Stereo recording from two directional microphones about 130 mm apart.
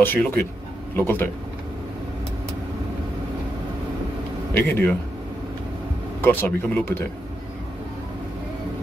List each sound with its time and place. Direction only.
0.0 s speech: 15° left (ahead or behind)
4.6 s speech: 15° left (ahead or behind)
6.2 s speech: 15° left (ahead or behind)